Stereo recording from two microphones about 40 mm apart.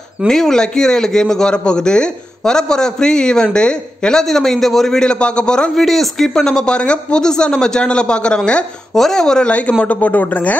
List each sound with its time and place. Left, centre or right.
0.3 s a man's voice: centre
4.2 s a man's voice: centre
5.8 s speech: centre; by 8.4 s left
8.9 s a man's voice: centre
9.5 s speech: left